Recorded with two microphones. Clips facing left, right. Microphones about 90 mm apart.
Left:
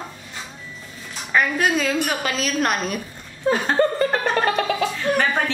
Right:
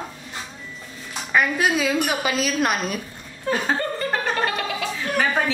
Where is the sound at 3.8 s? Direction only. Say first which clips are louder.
Left 9 dB; 35° left (ahead or behind).